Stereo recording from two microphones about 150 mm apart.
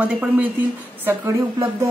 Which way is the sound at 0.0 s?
10° right (ahead or behind).